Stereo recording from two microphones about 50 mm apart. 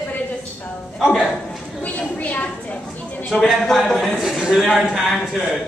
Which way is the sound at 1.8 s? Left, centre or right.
Left.